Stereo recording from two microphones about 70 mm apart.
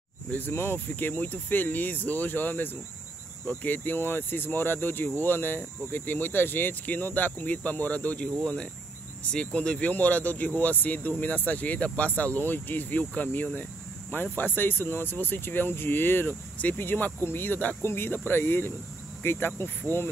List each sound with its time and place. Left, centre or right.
0.5 s speech: left
9.3 s speech: centre; by 20.0 s left